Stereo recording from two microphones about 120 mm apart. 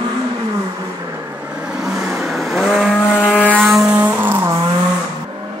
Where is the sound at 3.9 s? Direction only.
15° right (ahead or behind).